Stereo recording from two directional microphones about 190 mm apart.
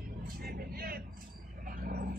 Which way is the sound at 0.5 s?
55° right (ahead or behind).